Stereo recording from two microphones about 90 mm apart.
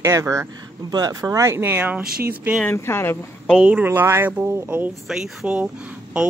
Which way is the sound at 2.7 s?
25° left (ahead or behind).